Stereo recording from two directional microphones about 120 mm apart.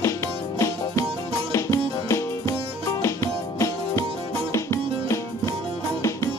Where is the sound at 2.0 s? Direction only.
25° left (ahead or behind).